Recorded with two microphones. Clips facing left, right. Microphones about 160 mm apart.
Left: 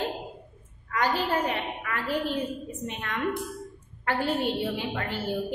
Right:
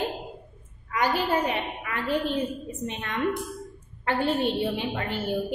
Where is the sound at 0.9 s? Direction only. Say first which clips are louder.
Right 2 dB; 10° right (ahead or behind).